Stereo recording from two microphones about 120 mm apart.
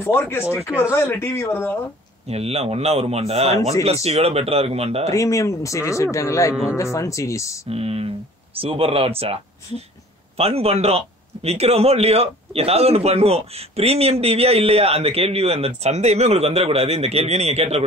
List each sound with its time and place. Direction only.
0.0 s speech: 20° left (ahead or behind)
2.2 s speech: 60° right (ahead or behind)
5.1 s speech: 25° left (ahead or behind)
7.7 s speech: 55° right (ahead or behind)